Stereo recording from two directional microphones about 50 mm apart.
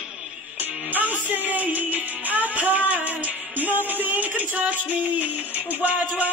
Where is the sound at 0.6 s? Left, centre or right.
Right.